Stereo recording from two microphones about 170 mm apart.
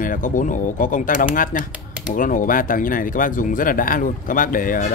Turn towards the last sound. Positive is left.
turn(degrees=55)  # may be behind; listen again after turning